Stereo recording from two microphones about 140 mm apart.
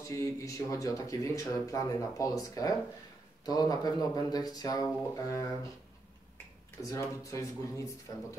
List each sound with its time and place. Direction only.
0.0 s speech: 20° left (ahead or behind)
6.8 s speech: 20° left (ahead or behind)